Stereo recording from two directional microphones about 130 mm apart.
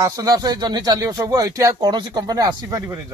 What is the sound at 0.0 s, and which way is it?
Speech, 25° right (ahead or behind).